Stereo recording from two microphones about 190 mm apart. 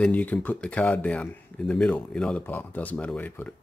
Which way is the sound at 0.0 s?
10° left (ahead or behind).